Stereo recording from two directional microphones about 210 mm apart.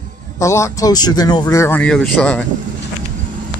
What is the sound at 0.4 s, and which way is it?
Speech, 15° left (ahead or behind).